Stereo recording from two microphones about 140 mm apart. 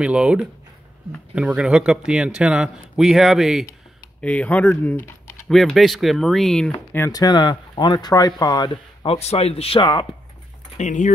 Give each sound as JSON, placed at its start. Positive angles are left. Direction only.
{"t": 0.0, "sound": "a man's voice", "side_deg": -5}
{"t": 4.2, "sound": "speech", "side_deg": 10}
{"t": 5.5, "sound": "a man's voice", "side_deg": 0}
{"t": 7.1, "sound": "speech", "side_deg": 25}
{"t": 10.8, "sound": "speech", "side_deg": 60}